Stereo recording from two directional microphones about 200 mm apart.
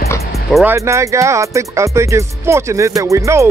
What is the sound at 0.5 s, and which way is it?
Speech, 10° right (ahead or behind).